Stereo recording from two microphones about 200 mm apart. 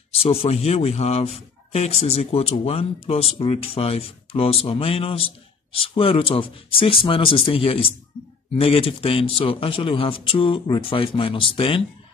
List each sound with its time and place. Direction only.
0.1 s a man's voice: 30° left (ahead or behind)